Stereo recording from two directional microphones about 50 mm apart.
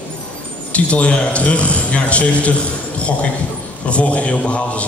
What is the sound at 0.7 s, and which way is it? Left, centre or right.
A man's voice, left.